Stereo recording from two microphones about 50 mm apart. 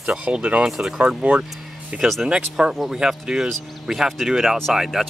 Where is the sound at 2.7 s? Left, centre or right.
Centre.